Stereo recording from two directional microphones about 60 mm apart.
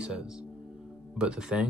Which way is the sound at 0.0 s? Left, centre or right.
Centre.